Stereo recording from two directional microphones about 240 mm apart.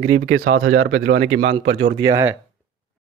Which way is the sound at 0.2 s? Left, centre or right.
Right.